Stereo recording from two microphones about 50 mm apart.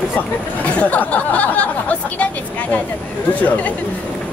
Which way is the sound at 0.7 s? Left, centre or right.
Left.